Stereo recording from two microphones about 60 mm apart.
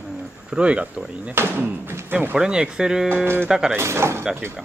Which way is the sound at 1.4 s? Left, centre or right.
Right.